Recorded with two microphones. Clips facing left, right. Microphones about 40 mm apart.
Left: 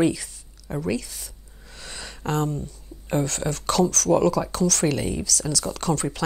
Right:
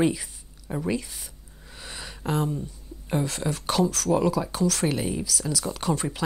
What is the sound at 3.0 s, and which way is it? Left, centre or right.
Speech, centre.